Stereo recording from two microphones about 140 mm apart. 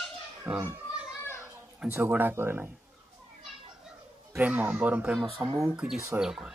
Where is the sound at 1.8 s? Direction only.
10° right (ahead or behind).